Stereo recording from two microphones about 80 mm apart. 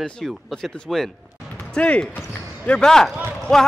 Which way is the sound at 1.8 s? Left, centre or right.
Centre.